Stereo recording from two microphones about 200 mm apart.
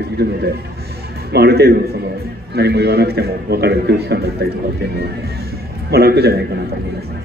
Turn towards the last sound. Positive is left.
turn(degrees=-55)  # may be behind; listen again after turning